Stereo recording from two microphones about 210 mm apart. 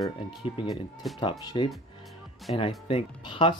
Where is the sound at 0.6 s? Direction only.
20° left (ahead or behind).